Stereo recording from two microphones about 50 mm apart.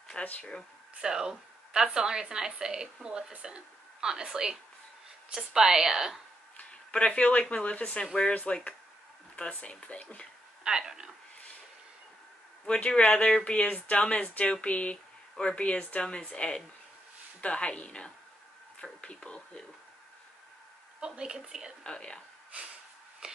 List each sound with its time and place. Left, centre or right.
0.2 s speech: left
1.0 s a woman's voice: centre
6.5 s a woman's voice: left
10.6 s a woman's voice: centre
12.6 s a woman's voice: left
21.0 s a woman's voice: centre
21.8 s a woman's voice: centre